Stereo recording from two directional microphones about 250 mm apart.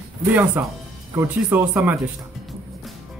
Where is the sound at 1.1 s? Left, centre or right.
Centre.